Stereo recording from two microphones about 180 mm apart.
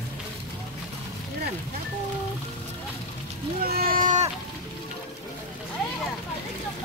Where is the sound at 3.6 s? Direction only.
55° right (ahead or behind).